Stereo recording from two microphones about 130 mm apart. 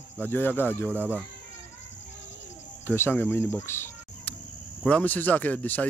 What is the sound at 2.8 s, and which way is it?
Speech, 15° left (ahead or behind).